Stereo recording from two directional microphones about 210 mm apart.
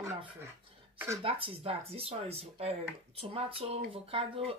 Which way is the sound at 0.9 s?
10° right (ahead or behind).